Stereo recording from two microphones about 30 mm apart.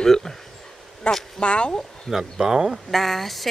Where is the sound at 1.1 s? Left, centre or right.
Left.